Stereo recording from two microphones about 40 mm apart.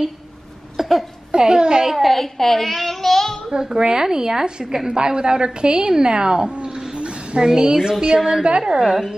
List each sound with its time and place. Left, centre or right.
0.7 s a sound: centre
1.3 s a child's voice: centre
2.0 s a child's voice: centre
3.5 s a woman's voice: centre
8.7 s a woman's voice: centre